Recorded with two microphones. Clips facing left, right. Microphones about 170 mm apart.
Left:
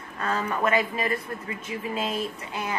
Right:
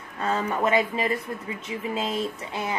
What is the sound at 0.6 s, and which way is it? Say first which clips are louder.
A woman's voice: right 2 dB; 20° right (ahead or behind).